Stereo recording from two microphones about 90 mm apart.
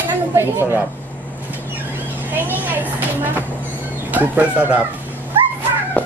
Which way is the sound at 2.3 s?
20° right (ahead or behind).